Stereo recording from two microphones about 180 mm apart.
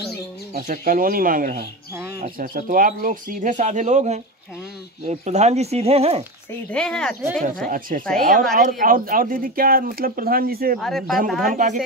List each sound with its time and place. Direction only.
0.6 s speech: 50° right (ahead or behind); by 6.2 s 35° right (ahead or behind)
6.7 s speech: 5° left (ahead or behind)
7.6 s speech: 50° right (ahead or behind)
10.8 s speech: centre (ahead or behind)
11.4 s speech: 45° right (ahead or behind)